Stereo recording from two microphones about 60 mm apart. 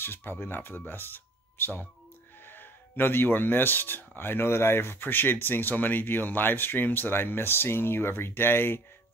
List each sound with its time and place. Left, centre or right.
0.0 s speech: left